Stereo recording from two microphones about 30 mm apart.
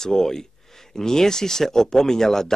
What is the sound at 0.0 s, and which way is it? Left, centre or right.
Speech, centre.